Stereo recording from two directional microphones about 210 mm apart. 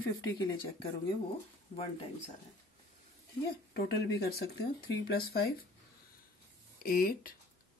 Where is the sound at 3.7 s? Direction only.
45° left (ahead or behind).